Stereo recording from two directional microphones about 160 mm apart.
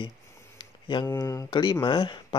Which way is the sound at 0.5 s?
30° left (ahead or behind).